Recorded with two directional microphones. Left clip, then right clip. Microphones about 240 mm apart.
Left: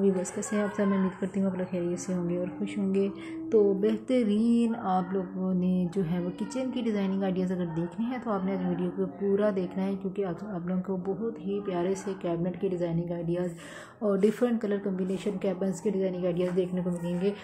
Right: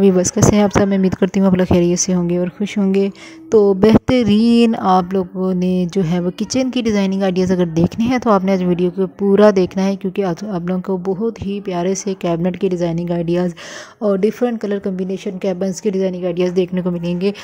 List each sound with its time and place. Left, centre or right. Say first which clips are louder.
0.5 s speech: right 12 dB; right